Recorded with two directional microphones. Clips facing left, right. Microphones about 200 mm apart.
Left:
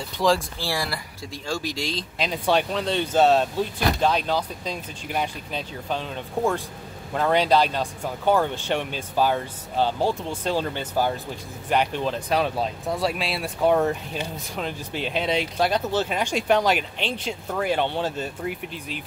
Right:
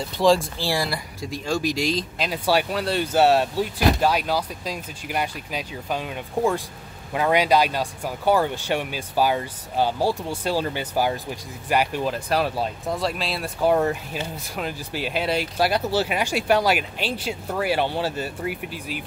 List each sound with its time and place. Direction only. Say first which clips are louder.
0.2 s speech: right 3 dB; 25° right (ahead or behind)
2.1 s speech: left 3 dB; 5° right (ahead or behind)